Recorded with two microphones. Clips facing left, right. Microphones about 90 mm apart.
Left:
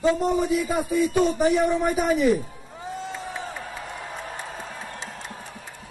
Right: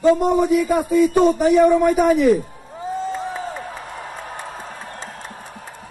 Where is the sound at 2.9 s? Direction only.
40° right (ahead or behind).